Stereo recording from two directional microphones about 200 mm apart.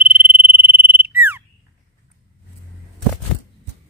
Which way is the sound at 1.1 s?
10° right (ahead or behind).